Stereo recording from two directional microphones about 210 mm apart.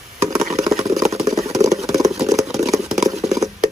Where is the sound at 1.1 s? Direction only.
30° right (ahead or behind).